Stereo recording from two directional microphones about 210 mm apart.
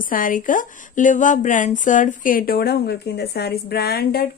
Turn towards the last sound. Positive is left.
turn(degrees=45)  # may be behind; listen again after turning